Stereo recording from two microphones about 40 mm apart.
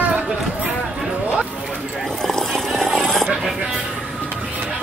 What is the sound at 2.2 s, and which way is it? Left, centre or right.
Vehicle, centre.